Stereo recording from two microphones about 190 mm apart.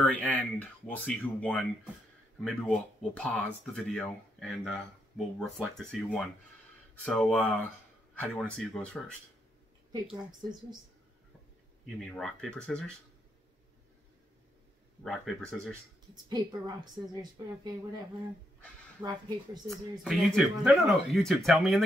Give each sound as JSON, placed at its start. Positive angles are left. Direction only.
{"t": 0.0, "sound": "speech", "side_deg": 5}
{"t": 9.9, "sound": "a woman's voice", "side_deg": -20}
{"t": 11.8, "sound": "speech", "side_deg": 0}
{"t": 15.0, "sound": "speech", "side_deg": 0}
{"t": 16.3, "sound": "a woman's voice", "side_deg": -20}
{"t": 18.9, "sound": "a woman's voice", "side_deg": -20}
{"t": 19.7, "sound": "speech", "side_deg": 0}